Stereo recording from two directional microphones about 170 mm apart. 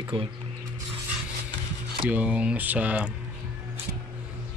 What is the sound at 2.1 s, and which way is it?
Speech, 5° right (ahead or behind).